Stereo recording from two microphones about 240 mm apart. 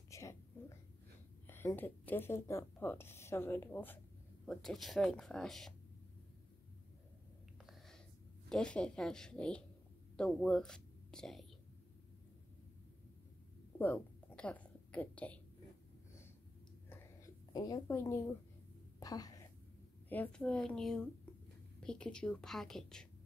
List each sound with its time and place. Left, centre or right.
0.1 s whispering: centre
1.5 s a woman's voice: centre
8.5 s a woman's voice: centre
13.7 s a sound: centre
16.9 s a sound: centre
20.1 s speech: centre